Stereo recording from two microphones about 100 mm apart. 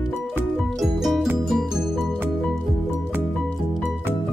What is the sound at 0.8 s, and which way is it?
Music, centre (ahead or behind).